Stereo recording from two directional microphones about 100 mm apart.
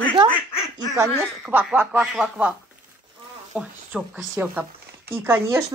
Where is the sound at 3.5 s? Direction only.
15° right (ahead or behind).